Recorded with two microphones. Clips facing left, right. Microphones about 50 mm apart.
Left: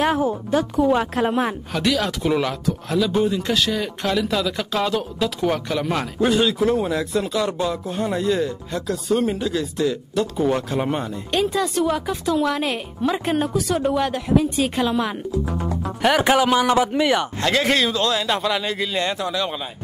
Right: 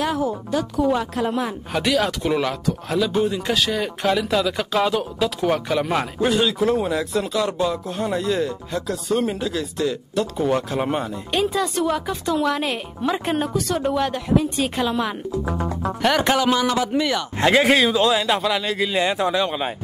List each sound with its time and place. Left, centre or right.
0.0 s speech: left
1.7 s speech: centre
17.4 s speech: centre
17.6 s speech: centre
18.9 s speech: centre
19.1 s speech: right